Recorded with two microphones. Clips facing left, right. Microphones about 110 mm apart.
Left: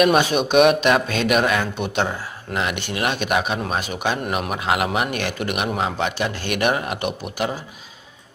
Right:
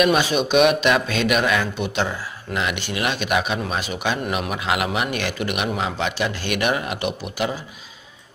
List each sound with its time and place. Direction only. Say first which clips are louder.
0.0 s speech: left 1 dB; 50° left (ahead or behind)